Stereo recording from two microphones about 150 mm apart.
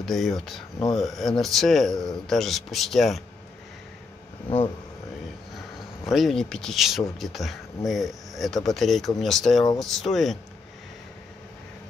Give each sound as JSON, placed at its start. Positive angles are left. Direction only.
{"t": 0.0, "sound": "speech", "side_deg": 0}
{"t": 0.7, "sound": "speech", "side_deg": 25}
{"t": 1.0, "sound": "speech", "side_deg": 0}
{"t": 6.0, "sound": "speech", "side_deg": 0}